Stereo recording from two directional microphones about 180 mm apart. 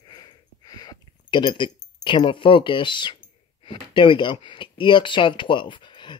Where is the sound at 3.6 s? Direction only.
25° left (ahead or behind).